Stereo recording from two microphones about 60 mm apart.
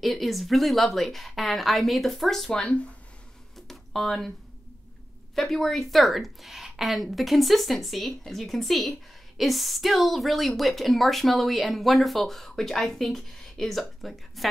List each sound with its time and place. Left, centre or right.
0.0 s speech: centre
2.5 s speech: centre
3.5 s a sound: centre
5.3 s speech: centre